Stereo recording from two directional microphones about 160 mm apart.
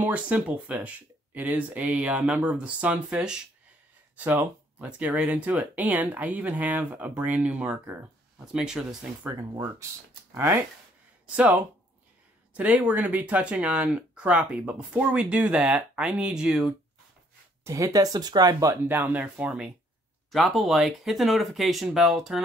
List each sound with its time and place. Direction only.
0.0 s speech: 10° right (ahead or behind)
9.3 s speech: 15° right (ahead or behind)
17.6 s speech: 20° right (ahead or behind); by 22.4 s centre (ahead or behind)